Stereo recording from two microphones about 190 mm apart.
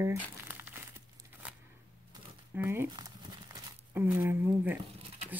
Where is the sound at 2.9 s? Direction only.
20° right (ahead or behind).